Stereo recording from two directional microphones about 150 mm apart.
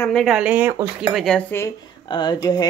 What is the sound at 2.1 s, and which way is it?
Speech, 30° left (ahead or behind).